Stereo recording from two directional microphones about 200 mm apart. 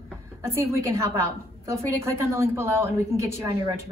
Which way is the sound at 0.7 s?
15° right (ahead or behind).